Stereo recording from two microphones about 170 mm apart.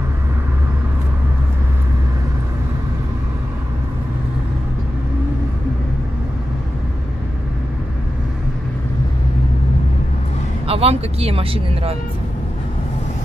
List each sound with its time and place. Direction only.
10.7 s speech: 35° right (ahead or behind)